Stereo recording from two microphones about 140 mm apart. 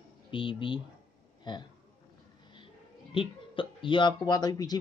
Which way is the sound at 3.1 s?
40° left (ahead or behind).